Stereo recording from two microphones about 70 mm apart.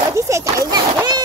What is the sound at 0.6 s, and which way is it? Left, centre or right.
Speech, right.